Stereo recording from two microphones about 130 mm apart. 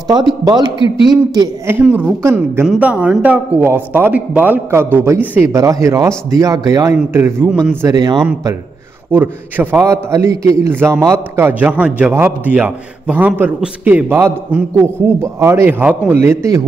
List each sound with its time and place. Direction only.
0.1 s a man's voice: 30° right (ahead or behind)
0.7 s a man's voice: 40° left (ahead or behind)
1.7 s a man's voice: 15° right (ahead or behind)
5.5 s speech: 25° right (ahead or behind)
9.1 s a man's voice: 15° right (ahead or behind)
16.2 s speech: 25° right (ahead or behind)